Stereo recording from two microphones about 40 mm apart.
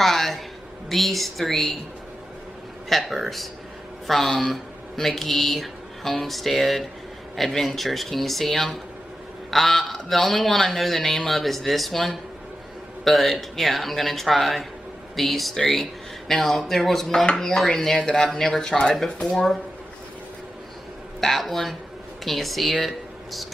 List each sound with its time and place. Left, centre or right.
0.0 s a man's voice: centre
2.9 s a man's voice: centre
21.2 s a man's voice: centre